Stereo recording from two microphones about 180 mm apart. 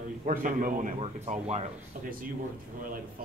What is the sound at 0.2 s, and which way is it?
Speech, 45° right (ahead or behind).